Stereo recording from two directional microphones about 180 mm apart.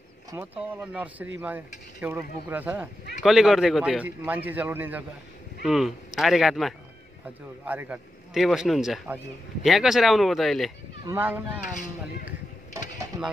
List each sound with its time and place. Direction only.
0.4 s a man's voice: 10° right (ahead or behind)
11.1 s a man's voice: 10° right (ahead or behind)
11.7 s speech: 45° left (ahead or behind)
13.1 s speech: 15° right (ahead or behind)